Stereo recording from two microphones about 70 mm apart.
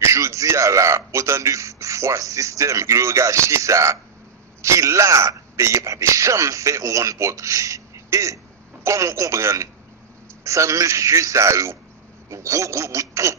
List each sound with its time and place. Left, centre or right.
0.0 s a man's voice: right